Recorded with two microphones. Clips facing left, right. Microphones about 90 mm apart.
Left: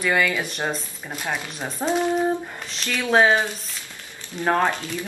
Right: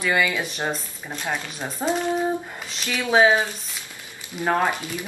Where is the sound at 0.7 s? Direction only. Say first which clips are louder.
Even; 5° left (ahead or behind).